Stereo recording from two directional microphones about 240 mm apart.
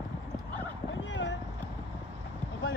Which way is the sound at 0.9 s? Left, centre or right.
Left.